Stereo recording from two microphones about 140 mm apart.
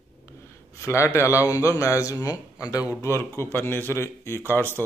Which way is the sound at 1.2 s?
20° left (ahead or behind).